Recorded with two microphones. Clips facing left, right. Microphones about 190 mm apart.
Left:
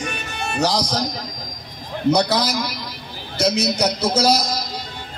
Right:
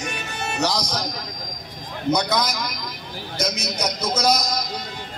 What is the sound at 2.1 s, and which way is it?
A man's voice, 30° left (ahead or behind).